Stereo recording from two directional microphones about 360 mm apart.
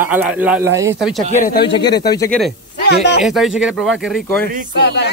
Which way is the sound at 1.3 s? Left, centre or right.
Left.